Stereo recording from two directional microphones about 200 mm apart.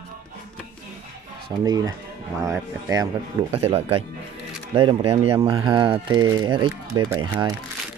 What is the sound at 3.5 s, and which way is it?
Speech, 30° right (ahead or behind).